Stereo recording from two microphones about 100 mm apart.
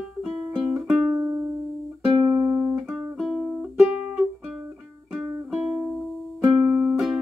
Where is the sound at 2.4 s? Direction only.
20° right (ahead or behind).